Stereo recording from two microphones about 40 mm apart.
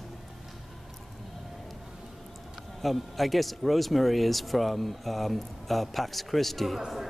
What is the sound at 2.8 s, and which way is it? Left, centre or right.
Speech, centre.